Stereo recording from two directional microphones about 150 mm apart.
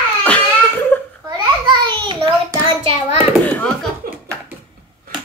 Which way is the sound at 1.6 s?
30° right (ahead or behind).